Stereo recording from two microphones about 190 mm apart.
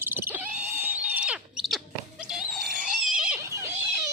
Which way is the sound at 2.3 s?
5° right (ahead or behind).